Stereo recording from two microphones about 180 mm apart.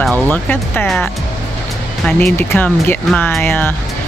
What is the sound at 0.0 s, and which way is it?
Speech, 10° left (ahead or behind).